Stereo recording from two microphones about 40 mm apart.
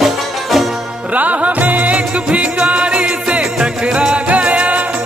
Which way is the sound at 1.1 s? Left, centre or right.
Right.